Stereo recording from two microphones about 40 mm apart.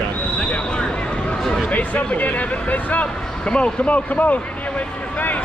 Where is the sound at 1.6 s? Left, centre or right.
Left.